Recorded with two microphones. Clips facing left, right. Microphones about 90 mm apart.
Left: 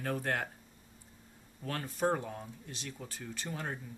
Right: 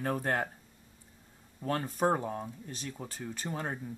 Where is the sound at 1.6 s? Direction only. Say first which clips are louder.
Right 4 dB; 35° right (ahead or behind).